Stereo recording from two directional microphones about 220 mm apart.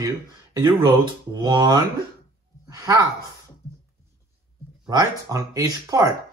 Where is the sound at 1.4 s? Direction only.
15° right (ahead or behind).